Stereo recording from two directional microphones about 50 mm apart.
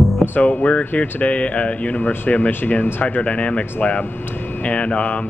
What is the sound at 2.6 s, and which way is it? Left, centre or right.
Speech, left.